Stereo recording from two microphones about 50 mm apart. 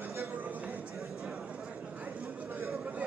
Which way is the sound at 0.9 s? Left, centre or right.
Centre.